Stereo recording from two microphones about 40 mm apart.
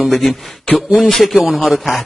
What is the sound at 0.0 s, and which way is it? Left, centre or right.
A man's voice, centre.